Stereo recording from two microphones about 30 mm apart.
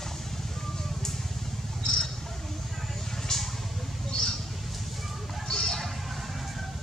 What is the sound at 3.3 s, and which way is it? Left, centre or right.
Vehicle, centre.